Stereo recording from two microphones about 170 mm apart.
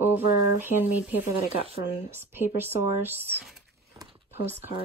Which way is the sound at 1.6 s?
35° right (ahead or behind).